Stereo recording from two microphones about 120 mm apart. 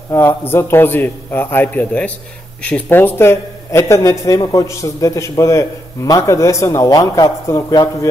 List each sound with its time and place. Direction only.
0.1 s a man's voice: 20° left (ahead or behind)